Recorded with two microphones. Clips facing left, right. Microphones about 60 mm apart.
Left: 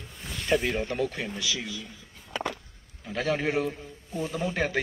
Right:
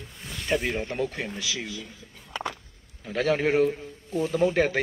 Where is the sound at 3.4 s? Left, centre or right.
Right.